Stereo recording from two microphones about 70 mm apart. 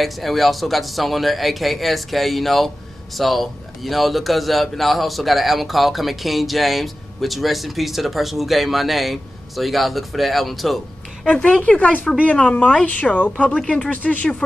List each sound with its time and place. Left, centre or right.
0.0 s a man's voice: centre
11.2 s speech: centre